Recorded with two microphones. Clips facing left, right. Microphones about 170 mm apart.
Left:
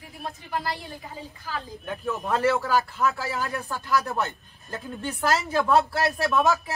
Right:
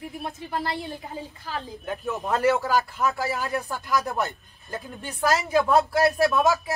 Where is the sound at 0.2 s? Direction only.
20° right (ahead or behind).